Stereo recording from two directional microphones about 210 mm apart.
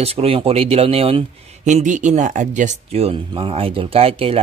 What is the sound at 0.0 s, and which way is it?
Speech, 30° right (ahead or behind).